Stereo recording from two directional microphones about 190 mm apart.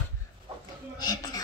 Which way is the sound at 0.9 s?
20° left (ahead or behind).